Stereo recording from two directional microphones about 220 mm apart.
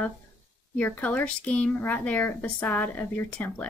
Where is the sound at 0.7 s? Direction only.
5° left (ahead or behind).